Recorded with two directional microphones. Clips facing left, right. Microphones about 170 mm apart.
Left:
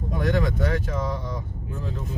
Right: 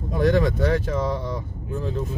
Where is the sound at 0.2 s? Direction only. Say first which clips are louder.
Right 5 dB; 35° right (ahead or behind).